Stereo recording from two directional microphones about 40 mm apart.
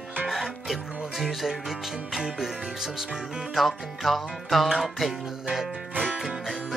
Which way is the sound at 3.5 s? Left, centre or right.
Centre.